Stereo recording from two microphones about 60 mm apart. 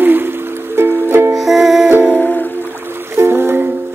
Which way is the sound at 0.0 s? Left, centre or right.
Right.